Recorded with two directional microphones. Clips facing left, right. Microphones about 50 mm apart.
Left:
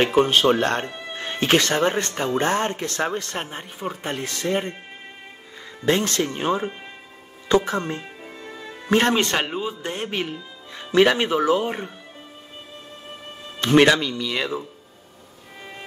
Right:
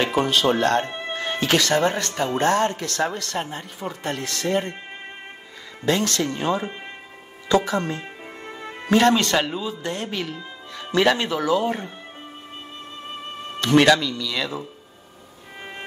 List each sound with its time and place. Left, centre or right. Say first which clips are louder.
0.0 s speech: left 3 dB; left
0.8 s music: right 3 dB; right
1.1 s speech: left 1 dB; left
5.9 s speech: left 1 dB; left
13.6 s speech: even; left